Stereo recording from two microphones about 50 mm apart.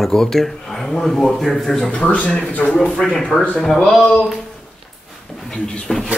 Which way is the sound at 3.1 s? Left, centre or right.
Centre.